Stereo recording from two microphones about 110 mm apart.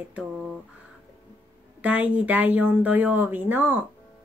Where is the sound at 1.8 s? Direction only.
15° right (ahead or behind).